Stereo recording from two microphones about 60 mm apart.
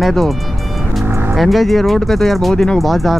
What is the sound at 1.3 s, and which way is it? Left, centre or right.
Speech, centre.